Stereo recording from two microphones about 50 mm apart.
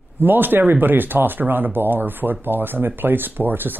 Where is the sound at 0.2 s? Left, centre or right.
Right.